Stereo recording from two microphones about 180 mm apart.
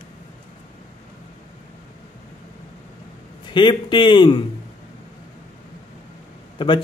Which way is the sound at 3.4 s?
25° left (ahead or behind).